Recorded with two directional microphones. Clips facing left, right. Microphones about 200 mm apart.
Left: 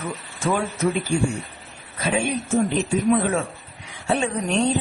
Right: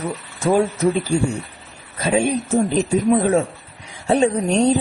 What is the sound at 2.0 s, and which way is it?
A woman's voice, 40° right (ahead or behind).